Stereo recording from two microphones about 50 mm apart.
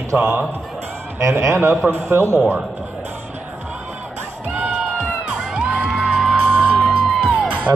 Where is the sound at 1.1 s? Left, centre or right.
Right.